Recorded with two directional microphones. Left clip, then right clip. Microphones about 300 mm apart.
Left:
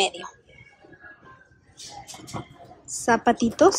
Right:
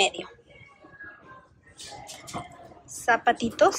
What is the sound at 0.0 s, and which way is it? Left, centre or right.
Speech, centre.